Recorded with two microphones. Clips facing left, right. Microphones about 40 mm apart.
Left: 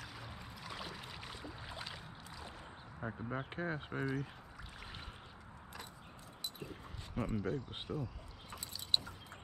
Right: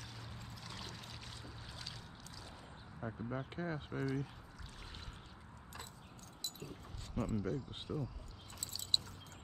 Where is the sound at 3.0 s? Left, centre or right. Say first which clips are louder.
Left 1 dB; centre.